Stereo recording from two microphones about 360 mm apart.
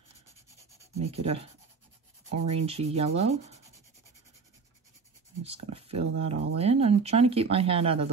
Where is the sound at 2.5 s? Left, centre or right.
Centre.